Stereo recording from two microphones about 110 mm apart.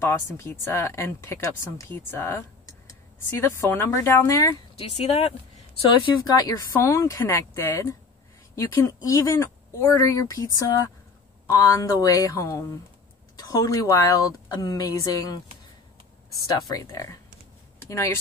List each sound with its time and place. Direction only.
0.0 s speech: 25° left (ahead or behind)
4.7 s speech: 65° left (ahead or behind)
6.2 s speech: 35° left (ahead or behind)
16.4 s speech: 30° left (ahead or behind)